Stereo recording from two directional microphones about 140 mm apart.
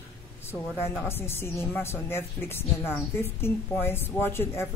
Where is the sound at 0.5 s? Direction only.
15° left (ahead or behind).